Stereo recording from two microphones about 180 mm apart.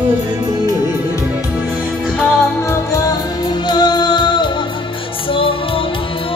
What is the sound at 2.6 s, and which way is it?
Music, 15° left (ahead or behind).